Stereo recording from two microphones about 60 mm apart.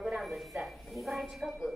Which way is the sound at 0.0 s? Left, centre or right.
Centre.